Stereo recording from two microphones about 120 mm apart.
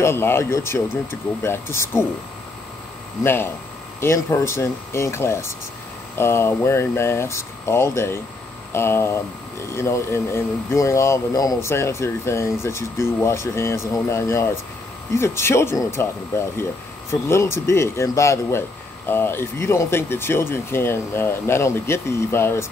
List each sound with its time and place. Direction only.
0.0 s speech: 20° left (ahead or behind)
4.0 s speech: 20° left (ahead or behind)